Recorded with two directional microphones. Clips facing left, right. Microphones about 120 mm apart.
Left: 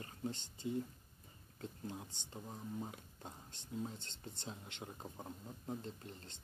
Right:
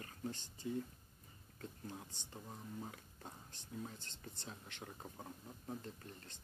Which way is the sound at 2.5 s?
15° left (ahead or behind).